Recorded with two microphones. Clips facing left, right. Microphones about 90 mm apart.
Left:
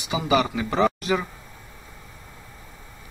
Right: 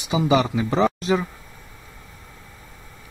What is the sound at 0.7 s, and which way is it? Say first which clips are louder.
Speech: right 1 dB; centre (ahead or behind).